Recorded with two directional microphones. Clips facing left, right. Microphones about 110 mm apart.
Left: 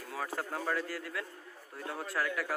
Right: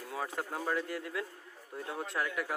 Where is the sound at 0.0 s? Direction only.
20° right (ahead or behind).